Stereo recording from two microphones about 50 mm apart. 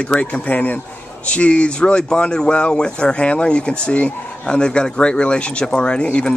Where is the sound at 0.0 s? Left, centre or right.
Left.